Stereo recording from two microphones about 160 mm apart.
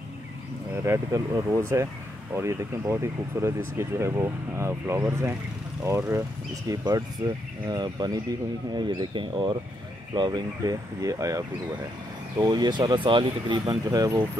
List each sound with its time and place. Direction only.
0.8 s speech: 20° right (ahead or behind)